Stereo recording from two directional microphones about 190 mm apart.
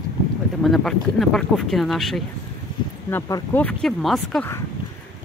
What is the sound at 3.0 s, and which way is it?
Speech, 15° left (ahead or behind).